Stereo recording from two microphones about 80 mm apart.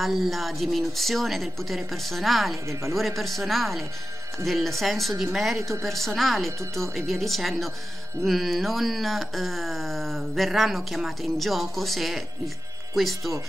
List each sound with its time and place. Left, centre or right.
0.0 s speech: centre
2.7 s speech: right
3.0 s speech: centre
5.6 s speech: right
5.9 s speech: centre